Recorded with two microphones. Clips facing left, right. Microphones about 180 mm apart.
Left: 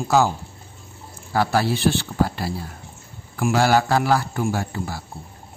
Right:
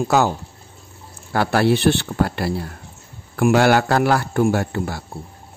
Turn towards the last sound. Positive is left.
turn(degrees=-65)  # may be behind; listen again after turning